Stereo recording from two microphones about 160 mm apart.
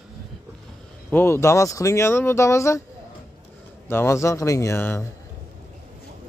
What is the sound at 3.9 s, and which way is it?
Speech, 15° left (ahead or behind).